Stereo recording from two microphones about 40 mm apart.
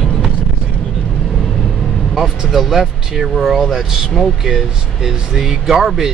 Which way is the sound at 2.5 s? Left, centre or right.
Centre.